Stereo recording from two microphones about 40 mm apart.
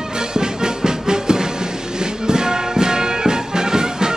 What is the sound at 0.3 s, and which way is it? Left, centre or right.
Music, centre.